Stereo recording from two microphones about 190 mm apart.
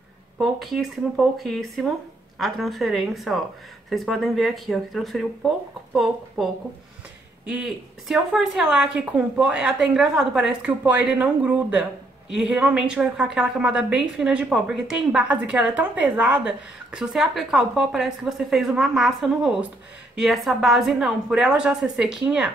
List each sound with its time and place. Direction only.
0.4 s a woman's voice: centre (ahead or behind)